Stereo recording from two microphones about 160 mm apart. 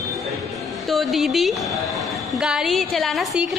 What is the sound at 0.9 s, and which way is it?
A woman's voice, centre (ahead or behind).